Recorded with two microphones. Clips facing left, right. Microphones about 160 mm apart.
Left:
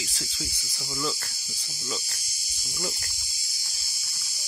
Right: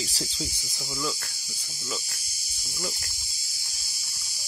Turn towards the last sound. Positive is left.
turn(degrees=0)  # may be behind; listen again after turning